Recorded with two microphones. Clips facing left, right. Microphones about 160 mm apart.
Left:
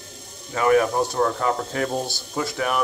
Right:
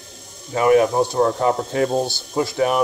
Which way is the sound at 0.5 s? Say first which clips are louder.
Right 4 dB; 20° right (ahead or behind).